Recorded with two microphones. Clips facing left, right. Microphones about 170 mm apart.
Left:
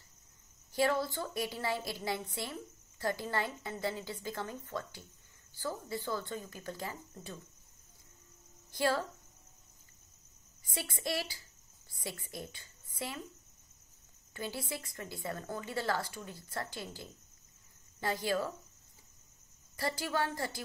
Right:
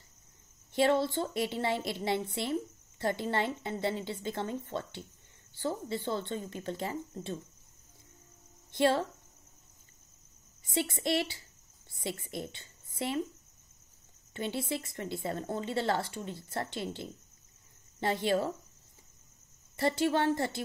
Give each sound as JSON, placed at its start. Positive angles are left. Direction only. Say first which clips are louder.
{"t": 0.7, "sound": "a woman's voice", "louder": "right 4 dB", "side_deg": -25}
{"t": 8.7, "sound": "a woman's voice", "louder": "right 5 dB", "side_deg": -25}
{"t": 10.6, "sound": "a woman's voice", "louder": "right 7 dB", "side_deg": -25}
{"t": 14.3, "sound": "a woman's voice", "louder": "right 6 dB", "side_deg": -25}
{"t": 19.8, "sound": "a woman's voice", "louder": "right 6 dB", "side_deg": -25}